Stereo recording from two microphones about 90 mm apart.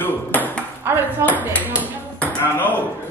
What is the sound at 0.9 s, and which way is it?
Speech, 25° right (ahead or behind).